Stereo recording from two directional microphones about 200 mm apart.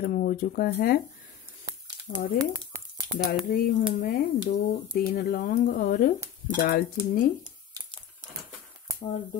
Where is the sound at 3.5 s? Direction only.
45° left (ahead or behind).